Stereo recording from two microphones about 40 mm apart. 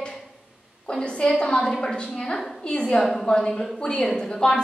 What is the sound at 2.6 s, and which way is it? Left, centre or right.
Speech, left.